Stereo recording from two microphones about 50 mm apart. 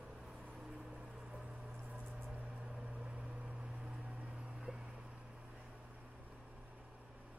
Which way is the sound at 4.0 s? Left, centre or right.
Right.